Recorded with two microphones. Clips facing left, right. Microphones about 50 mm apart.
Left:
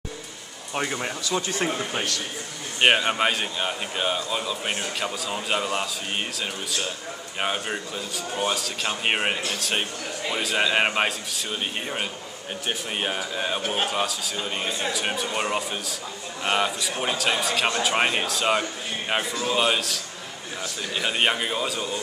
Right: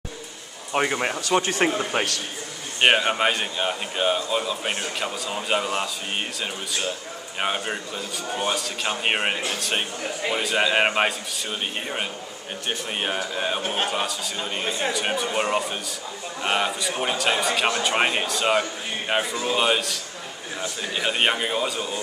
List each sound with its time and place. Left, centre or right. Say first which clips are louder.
0.7 s speech: right 5 dB; right
1.2 s speech: right 5 dB; right
1.8 s speech: right 4 dB; right
2.8 s a man's voice: right 1 dB; centre
12.6 s a man's voice: right 1 dB; centre